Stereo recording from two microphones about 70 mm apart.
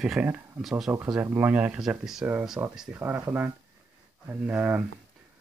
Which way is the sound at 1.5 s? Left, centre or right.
Right.